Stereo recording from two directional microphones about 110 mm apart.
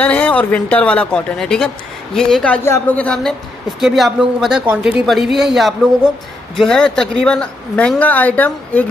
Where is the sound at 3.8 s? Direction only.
Centre (ahead or behind).